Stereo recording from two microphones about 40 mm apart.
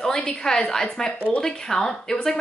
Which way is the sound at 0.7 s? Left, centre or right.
Centre.